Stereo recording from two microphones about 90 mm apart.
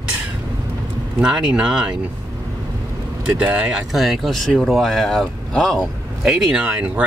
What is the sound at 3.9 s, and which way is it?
Speech, centre (ahead or behind).